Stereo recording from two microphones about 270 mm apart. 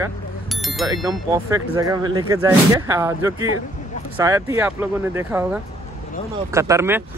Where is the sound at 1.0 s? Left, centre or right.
Centre.